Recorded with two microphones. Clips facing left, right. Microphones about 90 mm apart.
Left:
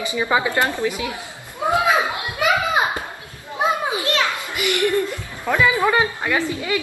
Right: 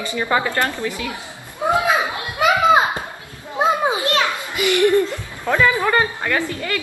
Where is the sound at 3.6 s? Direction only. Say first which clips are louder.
Right 3 dB; 20° right (ahead or behind).